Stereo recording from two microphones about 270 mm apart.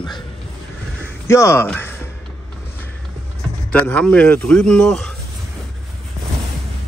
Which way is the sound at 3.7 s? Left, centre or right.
Centre.